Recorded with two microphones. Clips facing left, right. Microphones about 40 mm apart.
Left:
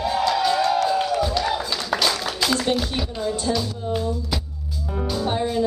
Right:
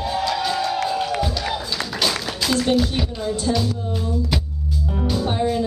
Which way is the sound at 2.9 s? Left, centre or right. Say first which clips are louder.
Right 1 dB; centre.